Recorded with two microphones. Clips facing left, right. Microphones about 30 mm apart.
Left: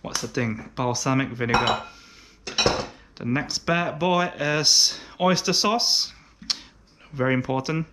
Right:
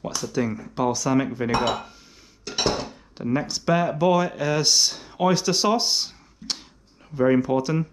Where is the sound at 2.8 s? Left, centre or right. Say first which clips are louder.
Even; centre.